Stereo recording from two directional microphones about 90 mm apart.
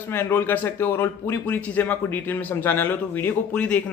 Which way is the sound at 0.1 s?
25° left (ahead or behind).